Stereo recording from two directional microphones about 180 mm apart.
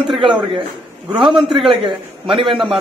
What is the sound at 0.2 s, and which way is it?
Speech, 30° right (ahead or behind).